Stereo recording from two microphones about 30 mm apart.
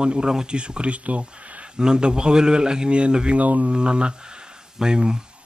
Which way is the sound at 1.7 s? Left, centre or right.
Right.